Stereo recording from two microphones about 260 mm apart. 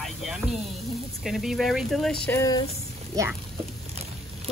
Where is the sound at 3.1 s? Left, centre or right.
Centre.